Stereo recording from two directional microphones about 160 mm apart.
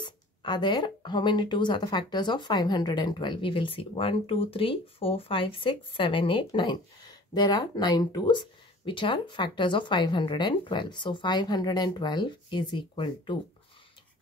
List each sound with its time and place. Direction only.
0.0 s speech: 30° left (ahead or behind)